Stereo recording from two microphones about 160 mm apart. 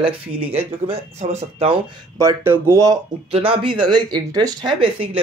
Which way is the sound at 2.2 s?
15° right (ahead or behind).